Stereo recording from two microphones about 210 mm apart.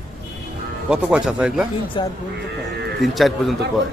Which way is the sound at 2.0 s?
20° left (ahead or behind).